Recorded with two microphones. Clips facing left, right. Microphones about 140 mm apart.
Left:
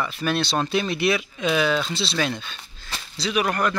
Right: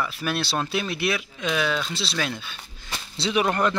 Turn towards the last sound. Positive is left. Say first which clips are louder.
# right 1 dB
turn(degrees=-25)  # may be behind; listen again after turning